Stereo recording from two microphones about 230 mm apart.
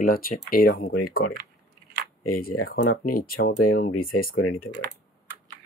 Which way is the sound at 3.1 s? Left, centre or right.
Left.